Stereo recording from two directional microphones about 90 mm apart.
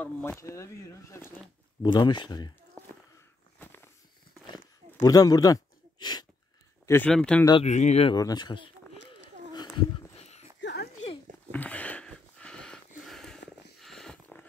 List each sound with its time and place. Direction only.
0.4 s speech: 35° left (ahead or behind)
1.8 s speech: 55° left (ahead or behind)
3.5 s walk: 25° left (ahead or behind)
5.0 s speech: 45° left (ahead or behind)
7.1 s speech: 10° left (ahead or behind)
7.4 s speech: 60° left (ahead or behind)
8.2 s speech: 50° left (ahead or behind)
9.5 s a sound: 55° left (ahead or behind)
11.5 s a sound: 15° left (ahead or behind)